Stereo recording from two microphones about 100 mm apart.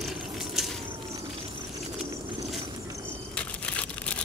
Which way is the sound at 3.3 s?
10° left (ahead or behind).